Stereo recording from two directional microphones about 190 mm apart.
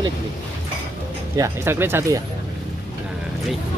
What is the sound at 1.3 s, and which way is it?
Speech, 15° right (ahead or behind).